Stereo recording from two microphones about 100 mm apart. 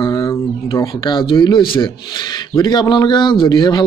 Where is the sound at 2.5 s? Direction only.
45° left (ahead or behind).